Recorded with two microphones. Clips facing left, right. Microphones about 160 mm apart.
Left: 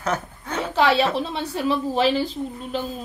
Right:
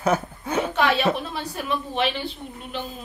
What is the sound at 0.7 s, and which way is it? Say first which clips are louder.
Chuckle: left 5 dB; 30° left (ahead or behind).